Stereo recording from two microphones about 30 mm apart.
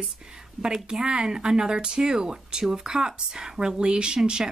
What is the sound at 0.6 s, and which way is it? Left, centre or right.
Speech, centre.